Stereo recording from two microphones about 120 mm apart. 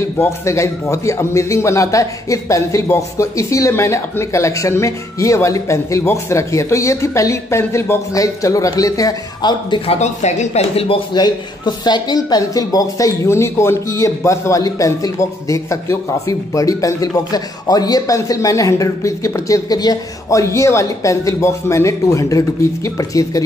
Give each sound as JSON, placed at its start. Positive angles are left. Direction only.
{"t": 0.0, "sound": "a man's voice", "side_deg": 25}
{"t": 9.8, "sound": "speech", "side_deg": 70}
{"t": 11.1, "sound": "a man's voice", "side_deg": 35}